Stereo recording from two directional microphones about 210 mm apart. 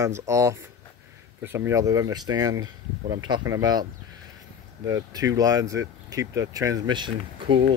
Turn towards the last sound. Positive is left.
turn(degrees=-25)  # may be behind; listen again after turning